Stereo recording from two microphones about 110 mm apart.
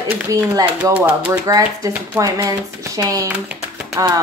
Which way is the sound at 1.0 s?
15° right (ahead or behind).